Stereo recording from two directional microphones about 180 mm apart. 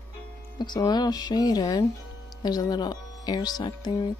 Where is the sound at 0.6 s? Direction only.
25° left (ahead or behind).